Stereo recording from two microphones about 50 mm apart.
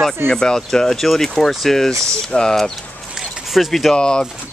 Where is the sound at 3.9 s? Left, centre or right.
Centre.